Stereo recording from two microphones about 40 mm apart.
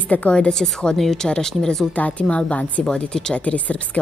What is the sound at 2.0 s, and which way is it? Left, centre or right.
Speech, left.